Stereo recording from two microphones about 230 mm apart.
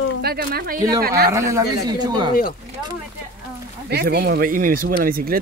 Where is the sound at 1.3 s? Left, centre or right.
Centre.